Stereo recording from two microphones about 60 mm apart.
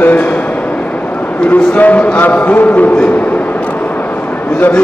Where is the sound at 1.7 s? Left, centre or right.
Left.